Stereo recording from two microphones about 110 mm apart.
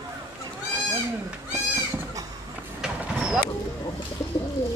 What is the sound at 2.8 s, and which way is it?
Vehicle, 5° right (ahead or behind).